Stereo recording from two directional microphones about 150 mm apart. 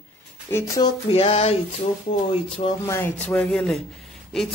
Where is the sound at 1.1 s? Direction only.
40° left (ahead or behind).